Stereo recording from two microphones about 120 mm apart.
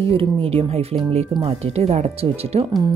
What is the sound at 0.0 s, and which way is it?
Speech, 50° right (ahead or behind).